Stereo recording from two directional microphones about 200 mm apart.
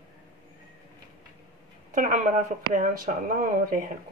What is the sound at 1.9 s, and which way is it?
Speech, 40° right (ahead or behind).